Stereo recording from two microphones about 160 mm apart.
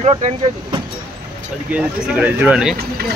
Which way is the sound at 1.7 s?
10° right (ahead or behind).